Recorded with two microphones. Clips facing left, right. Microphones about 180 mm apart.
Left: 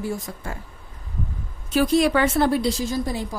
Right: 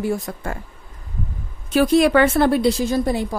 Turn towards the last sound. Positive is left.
turn(degrees=-60)  # may be behind; listen again after turning